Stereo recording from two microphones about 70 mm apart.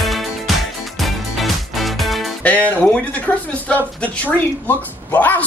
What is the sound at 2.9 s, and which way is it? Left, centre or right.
Speech, left.